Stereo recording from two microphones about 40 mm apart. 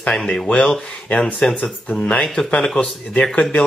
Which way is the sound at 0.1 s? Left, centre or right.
Left.